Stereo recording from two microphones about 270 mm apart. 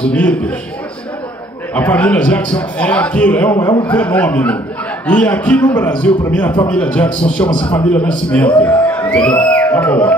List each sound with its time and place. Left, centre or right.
0.1 s a man's voice: centre
1.8 s a man's voice: centre
7.5 s a man's voice: centre
7.9 s a man's voice: centre